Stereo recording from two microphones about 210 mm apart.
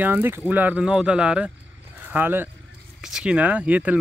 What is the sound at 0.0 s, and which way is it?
Speech, 10° right (ahead or behind).